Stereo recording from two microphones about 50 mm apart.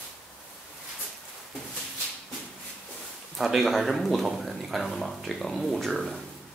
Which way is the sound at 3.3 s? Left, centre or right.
Centre.